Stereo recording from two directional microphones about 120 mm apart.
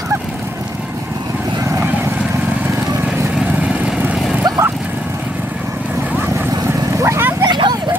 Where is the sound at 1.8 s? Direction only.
15° right (ahead or behind).